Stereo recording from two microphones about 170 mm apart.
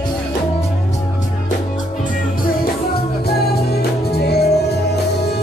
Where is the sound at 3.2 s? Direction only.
70° left (ahead or behind).